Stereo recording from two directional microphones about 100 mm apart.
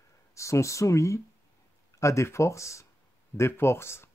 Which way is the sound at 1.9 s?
30° left (ahead or behind).